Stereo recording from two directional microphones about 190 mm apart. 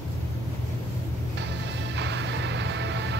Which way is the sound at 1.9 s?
65° right (ahead or behind).